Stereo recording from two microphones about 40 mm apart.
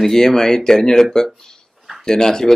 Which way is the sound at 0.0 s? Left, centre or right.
Centre.